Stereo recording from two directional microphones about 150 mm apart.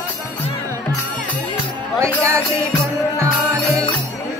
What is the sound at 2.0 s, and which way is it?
Music, 20° right (ahead or behind).